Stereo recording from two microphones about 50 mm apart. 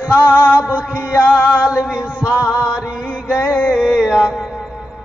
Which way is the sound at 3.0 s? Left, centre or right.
Right.